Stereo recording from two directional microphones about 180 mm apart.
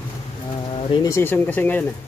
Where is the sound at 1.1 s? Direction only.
10° left (ahead or behind).